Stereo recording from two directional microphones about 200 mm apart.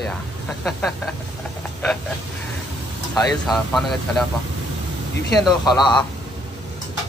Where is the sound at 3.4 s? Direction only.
Centre (ahead or behind).